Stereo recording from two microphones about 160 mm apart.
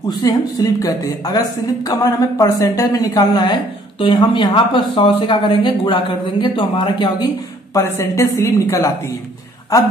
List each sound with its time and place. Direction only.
0.1 s speech: 20° left (ahead or behind)
7.7 s speech: 20° left (ahead or behind)